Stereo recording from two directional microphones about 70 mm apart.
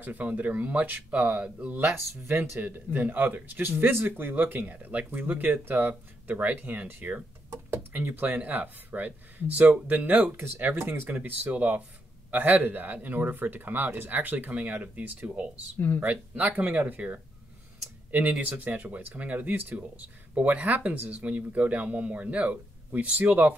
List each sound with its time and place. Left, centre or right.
0.0 s speech: right
1.8 s speech: right
2.6 s speech: right